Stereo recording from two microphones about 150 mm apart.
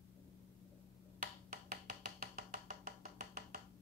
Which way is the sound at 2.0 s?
90° right.